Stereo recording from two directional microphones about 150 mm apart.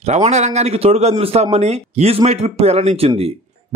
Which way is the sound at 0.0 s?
45° right (ahead or behind).